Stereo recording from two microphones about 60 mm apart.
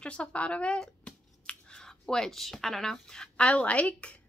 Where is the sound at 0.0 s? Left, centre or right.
Centre.